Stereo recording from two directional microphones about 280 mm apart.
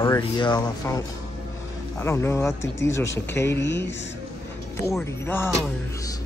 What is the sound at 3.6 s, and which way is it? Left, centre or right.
Speech, left.